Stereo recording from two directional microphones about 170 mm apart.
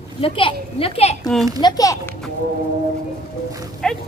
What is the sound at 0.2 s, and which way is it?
Speech, 30° left (ahead or behind).